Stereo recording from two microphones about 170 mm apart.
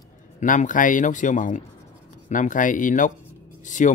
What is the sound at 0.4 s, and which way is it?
Speech, 45° left (ahead or behind).